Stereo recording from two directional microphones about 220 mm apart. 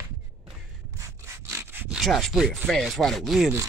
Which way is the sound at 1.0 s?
10° right (ahead or behind).